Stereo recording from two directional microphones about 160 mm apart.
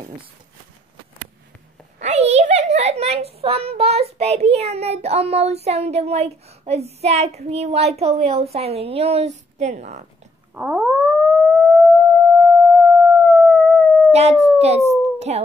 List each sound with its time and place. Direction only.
2.0 s a child's voice: 45° right (ahead or behind)
10.5 s cat: 10° right (ahead or behind)
11.1 s theremin: 5° left (ahead or behind)
12.4 s a sound: 5° right (ahead or behind)
14.1 s speech: 40° right (ahead or behind)